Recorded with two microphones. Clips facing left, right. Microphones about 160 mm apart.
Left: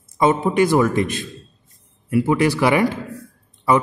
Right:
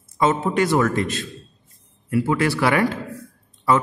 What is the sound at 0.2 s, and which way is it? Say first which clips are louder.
A man's voice: left 3 dB; 15° left (ahead or behind).